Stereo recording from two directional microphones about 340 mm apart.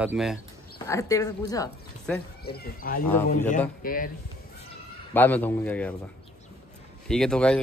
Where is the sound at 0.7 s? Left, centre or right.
Centre.